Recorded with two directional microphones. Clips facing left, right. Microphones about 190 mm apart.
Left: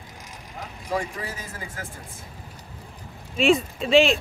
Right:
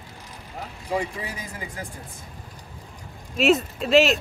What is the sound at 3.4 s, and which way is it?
Speech, 5° right (ahead or behind).